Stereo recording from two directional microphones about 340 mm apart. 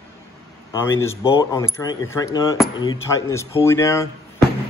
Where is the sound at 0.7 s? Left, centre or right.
Centre.